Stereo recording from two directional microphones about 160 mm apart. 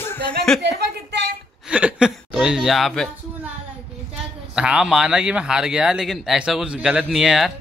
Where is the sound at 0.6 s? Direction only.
90° right.